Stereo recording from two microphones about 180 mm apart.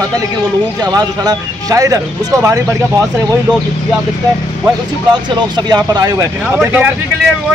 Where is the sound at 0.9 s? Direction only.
20° right (ahead or behind).